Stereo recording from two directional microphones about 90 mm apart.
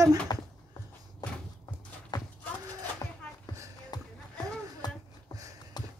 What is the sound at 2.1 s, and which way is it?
Horse, 50° left (ahead or behind).